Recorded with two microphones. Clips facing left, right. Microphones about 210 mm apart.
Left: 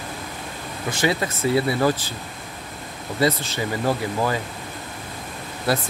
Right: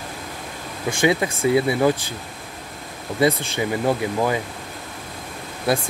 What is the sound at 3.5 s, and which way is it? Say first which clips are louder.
Speech: right 2 dB; 15° right (ahead or behind).